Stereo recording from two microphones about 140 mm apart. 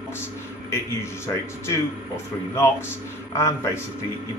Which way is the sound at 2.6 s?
20° left (ahead or behind).